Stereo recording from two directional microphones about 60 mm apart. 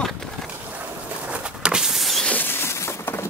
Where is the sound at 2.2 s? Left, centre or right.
Left.